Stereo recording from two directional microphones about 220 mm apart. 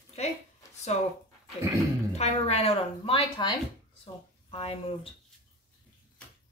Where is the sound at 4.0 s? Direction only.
25° left (ahead or behind).